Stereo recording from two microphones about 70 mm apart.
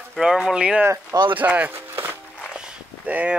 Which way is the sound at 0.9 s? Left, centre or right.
Right.